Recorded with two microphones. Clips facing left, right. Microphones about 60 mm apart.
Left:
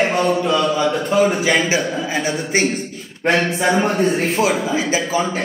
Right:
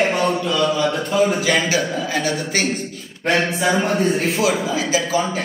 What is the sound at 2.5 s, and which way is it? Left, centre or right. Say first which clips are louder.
Speech: left 5 dB; left.